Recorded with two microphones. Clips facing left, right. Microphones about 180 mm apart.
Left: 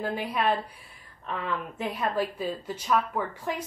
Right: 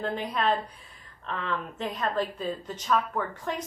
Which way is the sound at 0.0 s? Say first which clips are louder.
Even; 10° left (ahead or behind).